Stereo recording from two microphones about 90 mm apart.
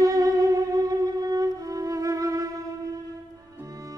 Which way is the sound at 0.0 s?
40° right (ahead or behind).